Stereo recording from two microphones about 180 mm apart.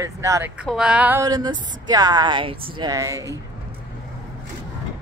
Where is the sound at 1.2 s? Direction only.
25° right (ahead or behind).